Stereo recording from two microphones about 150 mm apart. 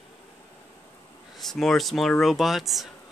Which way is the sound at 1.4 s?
Centre (ahead or behind).